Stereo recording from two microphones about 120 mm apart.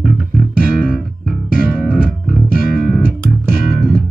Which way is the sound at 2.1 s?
Centre (ahead or behind).